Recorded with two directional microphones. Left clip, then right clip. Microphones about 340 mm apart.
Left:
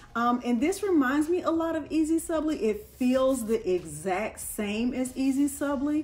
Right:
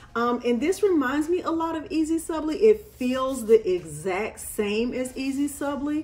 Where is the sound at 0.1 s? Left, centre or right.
Centre.